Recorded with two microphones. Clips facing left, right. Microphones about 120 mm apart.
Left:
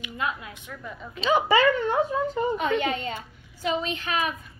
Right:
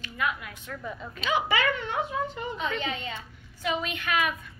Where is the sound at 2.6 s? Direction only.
55° left (ahead or behind).